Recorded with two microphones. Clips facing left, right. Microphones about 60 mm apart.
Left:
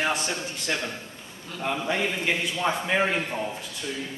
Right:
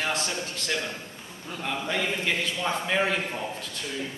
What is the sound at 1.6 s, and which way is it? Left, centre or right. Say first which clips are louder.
Speech: left 2 dB; centre.